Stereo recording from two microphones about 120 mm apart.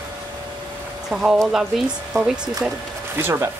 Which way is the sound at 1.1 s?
5° right (ahead or behind).